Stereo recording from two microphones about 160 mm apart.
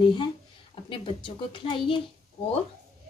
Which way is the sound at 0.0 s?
30° left (ahead or behind).